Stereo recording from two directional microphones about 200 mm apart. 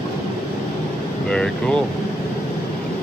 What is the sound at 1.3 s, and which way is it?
Air conditioning, 5° left (ahead or behind).